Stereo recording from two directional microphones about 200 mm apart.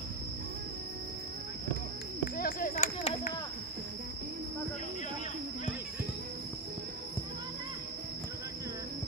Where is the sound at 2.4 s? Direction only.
45° left (ahead or behind).